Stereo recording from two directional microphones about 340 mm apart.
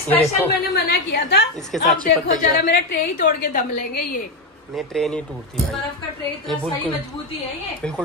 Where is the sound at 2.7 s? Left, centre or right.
Left.